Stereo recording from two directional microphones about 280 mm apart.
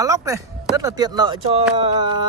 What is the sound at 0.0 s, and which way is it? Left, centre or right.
Speech, centre.